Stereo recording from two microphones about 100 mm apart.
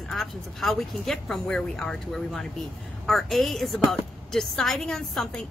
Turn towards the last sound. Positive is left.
turn(degrees=5)  # may be behind; listen again after turning